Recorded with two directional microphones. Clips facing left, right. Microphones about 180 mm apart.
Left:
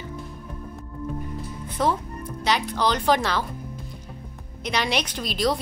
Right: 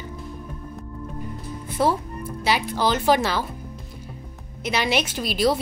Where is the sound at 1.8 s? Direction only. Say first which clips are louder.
Right 2 dB; 10° right (ahead or behind).